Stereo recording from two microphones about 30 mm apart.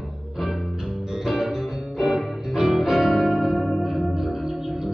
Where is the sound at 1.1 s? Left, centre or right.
Centre.